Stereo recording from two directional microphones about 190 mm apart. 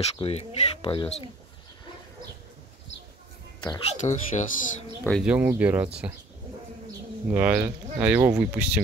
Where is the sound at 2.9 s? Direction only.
70° left (ahead or behind).